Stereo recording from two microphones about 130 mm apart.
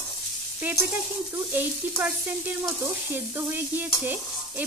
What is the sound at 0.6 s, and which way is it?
Stir, 15° right (ahead or behind).